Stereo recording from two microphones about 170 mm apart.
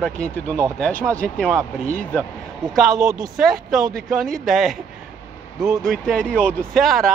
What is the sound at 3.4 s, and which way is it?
Speech, centre (ahead or behind).